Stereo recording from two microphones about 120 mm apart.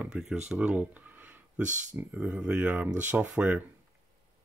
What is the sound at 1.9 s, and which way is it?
Speech, 15° right (ahead or behind).